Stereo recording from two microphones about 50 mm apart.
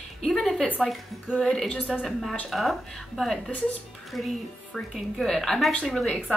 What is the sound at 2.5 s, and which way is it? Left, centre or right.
A woman's voice, centre.